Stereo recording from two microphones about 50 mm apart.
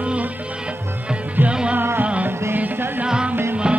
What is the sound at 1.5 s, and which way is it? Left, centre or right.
Music, right.